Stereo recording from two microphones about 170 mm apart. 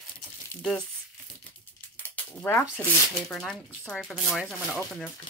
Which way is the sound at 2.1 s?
10° left (ahead or behind).